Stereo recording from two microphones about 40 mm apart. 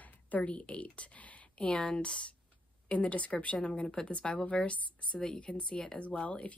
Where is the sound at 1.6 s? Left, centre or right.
Left.